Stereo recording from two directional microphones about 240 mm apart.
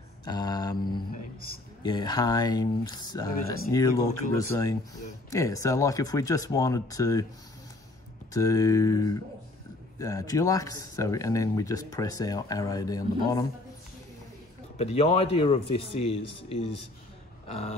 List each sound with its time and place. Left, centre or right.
0.2 s speech: centre
8.3 s speech: centre
14.8 s a man's voice: left
17.5 s a sound: left